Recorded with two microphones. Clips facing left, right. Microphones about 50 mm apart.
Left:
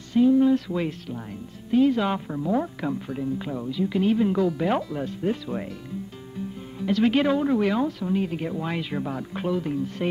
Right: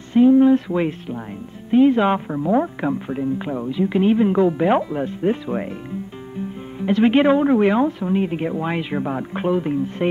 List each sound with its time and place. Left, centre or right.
0.1 s speech: right